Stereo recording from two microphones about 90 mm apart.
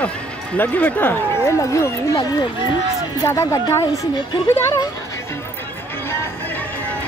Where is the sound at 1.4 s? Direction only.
35° left (ahead or behind).